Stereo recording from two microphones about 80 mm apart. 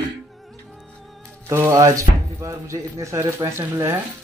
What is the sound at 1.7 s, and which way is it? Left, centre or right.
Speech, right.